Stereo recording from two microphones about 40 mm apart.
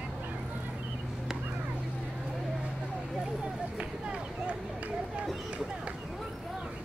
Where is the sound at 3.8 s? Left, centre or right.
Right.